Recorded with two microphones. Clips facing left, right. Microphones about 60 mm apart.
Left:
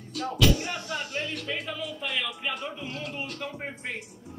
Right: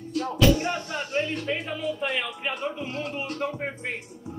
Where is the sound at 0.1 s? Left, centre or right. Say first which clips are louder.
Right 4 dB; right.